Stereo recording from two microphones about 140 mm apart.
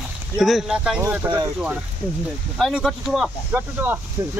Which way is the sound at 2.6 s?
Centre (ahead or behind).